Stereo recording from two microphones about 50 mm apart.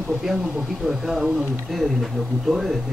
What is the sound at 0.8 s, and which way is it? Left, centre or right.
Speech, centre.